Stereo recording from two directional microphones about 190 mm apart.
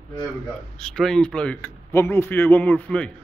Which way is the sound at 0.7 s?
5° left (ahead or behind).